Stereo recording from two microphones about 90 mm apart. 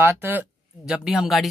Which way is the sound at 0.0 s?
20° right (ahead or behind).